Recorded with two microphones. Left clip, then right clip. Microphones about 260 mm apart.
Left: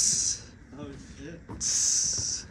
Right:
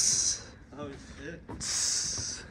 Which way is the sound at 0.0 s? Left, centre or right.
Centre.